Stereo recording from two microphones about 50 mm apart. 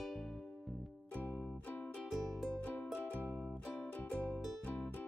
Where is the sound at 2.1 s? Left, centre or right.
Centre.